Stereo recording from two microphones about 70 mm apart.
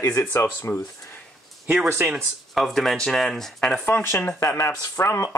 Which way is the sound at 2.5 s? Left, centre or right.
Centre.